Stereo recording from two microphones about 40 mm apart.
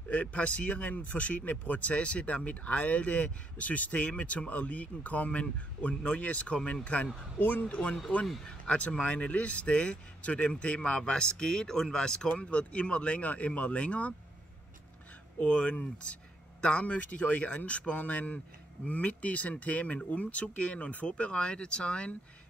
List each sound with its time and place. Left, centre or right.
0.1 s speech: left
2.0 s speech: left
7.3 s speech: left
7.6 s speech: left
15.3 s speech: left